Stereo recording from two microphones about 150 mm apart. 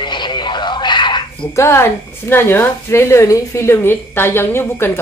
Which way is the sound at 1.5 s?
15° left (ahead or behind).